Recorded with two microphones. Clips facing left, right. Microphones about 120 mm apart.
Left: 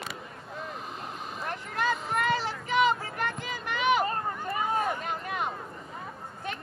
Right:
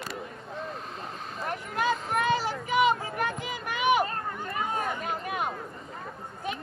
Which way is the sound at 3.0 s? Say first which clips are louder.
Right 2 dB; 15° right (ahead or behind).